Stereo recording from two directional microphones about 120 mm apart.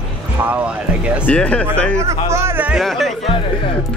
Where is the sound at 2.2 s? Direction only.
20° right (ahead or behind).